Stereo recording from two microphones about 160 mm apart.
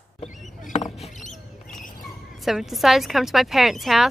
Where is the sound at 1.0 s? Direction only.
50° left (ahead or behind).